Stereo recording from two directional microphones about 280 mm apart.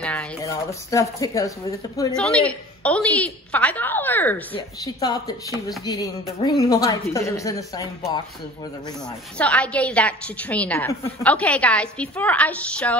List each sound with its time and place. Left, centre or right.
0.0 s a woman's voice: centre
6.4 s a woman's voice: centre